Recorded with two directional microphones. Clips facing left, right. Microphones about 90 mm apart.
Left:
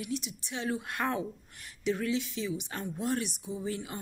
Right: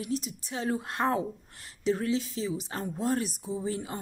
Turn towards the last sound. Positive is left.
turn(degrees=-30)  # may be behind; listen again after turning